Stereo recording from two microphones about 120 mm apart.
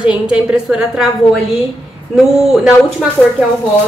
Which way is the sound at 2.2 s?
5° right (ahead or behind).